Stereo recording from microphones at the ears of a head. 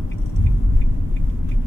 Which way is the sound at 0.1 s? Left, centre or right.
Left.